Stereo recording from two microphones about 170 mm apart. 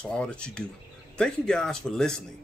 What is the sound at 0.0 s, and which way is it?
Speech, 5° left (ahead or behind).